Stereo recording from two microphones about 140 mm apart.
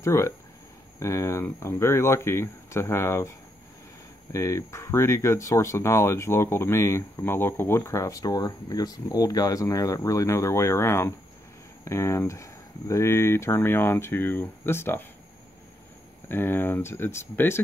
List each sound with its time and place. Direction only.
0.0 s speech: 20° left (ahead or behind)
16.3 s speech: 15° left (ahead or behind)